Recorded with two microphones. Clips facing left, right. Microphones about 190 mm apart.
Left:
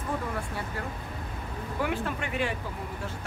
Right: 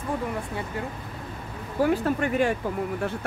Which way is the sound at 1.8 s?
40° right (ahead or behind).